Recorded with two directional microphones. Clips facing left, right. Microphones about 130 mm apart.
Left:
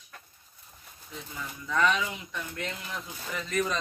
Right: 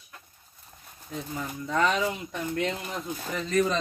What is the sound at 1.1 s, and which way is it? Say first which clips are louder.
Speech: right 7 dB; 45° right (ahead or behind).